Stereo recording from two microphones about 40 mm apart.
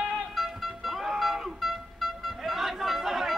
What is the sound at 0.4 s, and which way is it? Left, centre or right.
Music, centre.